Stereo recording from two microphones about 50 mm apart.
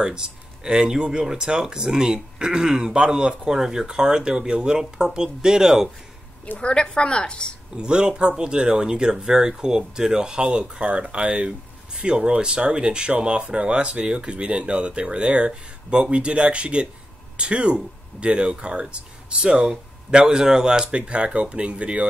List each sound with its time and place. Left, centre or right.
0.0 s speech: centre
6.6 s a woman's voice: centre
7.7 s speech: centre